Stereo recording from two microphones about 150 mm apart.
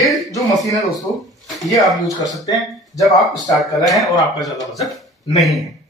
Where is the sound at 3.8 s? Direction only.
Centre (ahead or behind).